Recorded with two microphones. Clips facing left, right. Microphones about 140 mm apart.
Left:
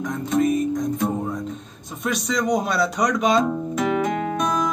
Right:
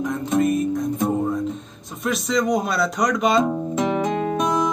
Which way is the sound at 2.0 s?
Centre (ahead or behind).